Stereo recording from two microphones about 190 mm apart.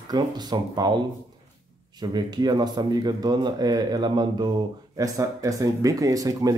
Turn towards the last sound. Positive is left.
turn(degrees=-20)  # may be behind; listen again after turning